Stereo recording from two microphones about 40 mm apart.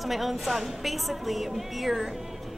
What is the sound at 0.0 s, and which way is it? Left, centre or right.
A woman's voice, centre.